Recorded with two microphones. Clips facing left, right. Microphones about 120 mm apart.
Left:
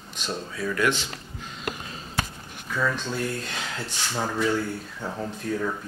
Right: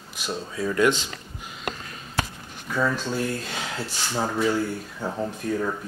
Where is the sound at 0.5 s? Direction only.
20° right (ahead or behind).